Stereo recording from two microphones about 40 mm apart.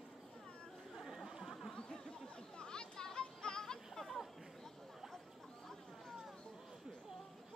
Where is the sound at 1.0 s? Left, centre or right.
Centre.